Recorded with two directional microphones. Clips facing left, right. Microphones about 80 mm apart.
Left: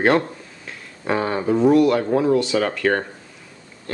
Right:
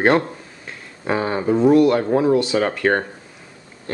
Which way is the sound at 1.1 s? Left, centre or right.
Centre.